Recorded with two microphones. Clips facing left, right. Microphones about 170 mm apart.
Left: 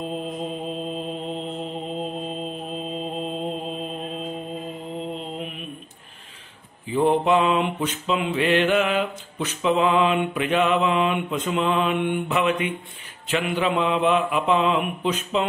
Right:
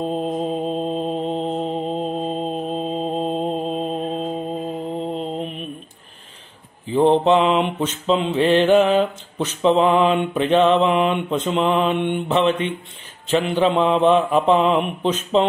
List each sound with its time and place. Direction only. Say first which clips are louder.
0.1 s mantra: right 7 dB; 40° right (ahead or behind)
6.9 s mantra: right 4 dB; 25° right (ahead or behind)